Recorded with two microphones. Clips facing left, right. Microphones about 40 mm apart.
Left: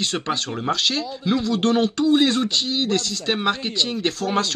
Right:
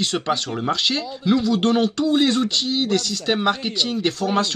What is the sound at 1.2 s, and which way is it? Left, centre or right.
Speech, centre.